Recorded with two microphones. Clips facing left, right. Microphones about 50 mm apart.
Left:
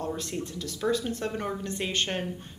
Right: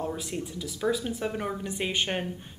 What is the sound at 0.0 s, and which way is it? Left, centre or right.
A woman's voice, centre.